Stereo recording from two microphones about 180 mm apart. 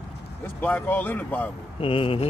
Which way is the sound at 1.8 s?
30° left (ahead or behind).